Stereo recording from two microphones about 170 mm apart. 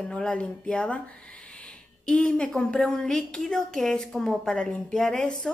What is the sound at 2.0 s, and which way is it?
A woman's voice, 5° left (ahead or behind).